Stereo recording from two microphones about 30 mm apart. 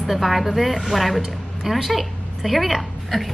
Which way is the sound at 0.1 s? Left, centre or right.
Centre.